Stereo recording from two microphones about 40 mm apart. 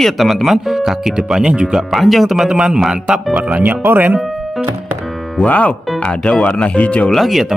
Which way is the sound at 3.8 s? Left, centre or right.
Right.